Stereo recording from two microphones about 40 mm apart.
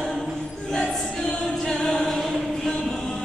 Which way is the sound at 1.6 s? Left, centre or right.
Centre.